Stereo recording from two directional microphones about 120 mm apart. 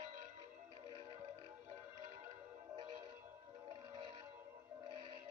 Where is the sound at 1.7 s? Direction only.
25° right (ahead or behind).